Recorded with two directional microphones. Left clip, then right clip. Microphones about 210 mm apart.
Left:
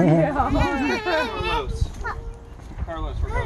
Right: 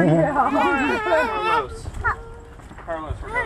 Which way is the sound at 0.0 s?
5° left (ahead or behind).